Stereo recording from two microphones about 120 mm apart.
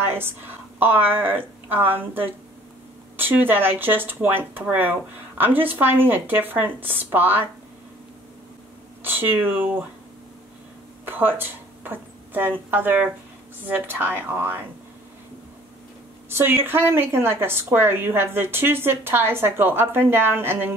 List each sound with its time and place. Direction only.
0.0 s a sound: 20° right (ahead or behind)
0.7 s speech: 15° right (ahead or behind)
9.0 s speech: 15° right (ahead or behind)
11.1 s speech: 15° right (ahead or behind)
16.3 s a woman's voice: 20° right (ahead or behind)